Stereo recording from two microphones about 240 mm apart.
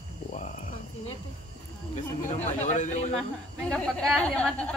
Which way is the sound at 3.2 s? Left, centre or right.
Centre.